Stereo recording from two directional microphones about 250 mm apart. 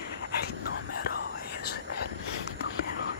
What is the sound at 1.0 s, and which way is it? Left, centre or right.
Whispering, left.